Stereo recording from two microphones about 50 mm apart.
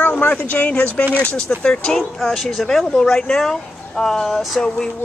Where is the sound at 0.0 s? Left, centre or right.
Left.